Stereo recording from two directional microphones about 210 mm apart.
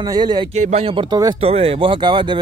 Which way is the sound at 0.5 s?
30° right (ahead or behind).